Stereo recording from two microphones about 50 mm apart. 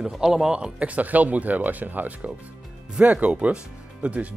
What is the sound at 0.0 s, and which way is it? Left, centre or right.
Speech, centre.